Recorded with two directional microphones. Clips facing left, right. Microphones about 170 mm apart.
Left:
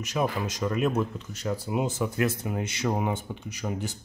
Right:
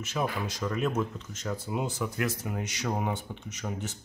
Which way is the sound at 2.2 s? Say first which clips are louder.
Left 4 dB; 25° left (ahead or behind).